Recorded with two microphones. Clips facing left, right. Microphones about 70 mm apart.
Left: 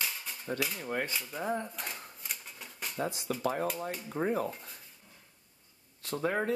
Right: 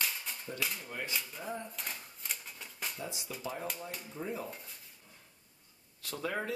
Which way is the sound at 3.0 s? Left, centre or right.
Left.